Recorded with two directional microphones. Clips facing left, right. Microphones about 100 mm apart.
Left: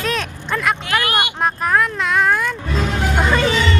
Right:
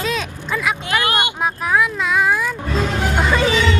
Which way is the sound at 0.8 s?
20° right (ahead or behind).